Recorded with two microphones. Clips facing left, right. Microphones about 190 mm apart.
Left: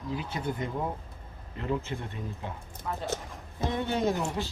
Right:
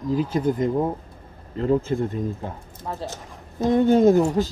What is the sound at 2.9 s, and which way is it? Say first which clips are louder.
Speech: right 3 dB; 30° right (ahead or behind).